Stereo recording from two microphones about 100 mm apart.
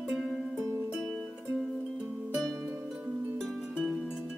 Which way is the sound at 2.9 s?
15° right (ahead or behind).